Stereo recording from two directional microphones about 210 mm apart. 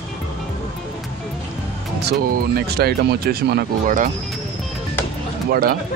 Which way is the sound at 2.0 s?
50° right (ahead or behind).